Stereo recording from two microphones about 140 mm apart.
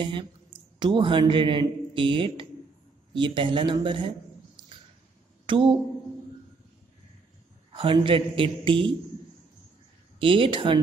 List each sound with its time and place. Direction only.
0.0 s a man's voice: 35° right (ahead or behind)
5.5 s a man's voice: 35° right (ahead or behind)
7.7 s a man's voice: 35° right (ahead or behind)
10.1 s a man's voice: 40° right (ahead or behind)